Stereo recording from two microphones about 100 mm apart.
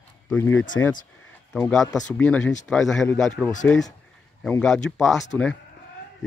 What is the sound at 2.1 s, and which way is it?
Speech, 15° left (ahead or behind).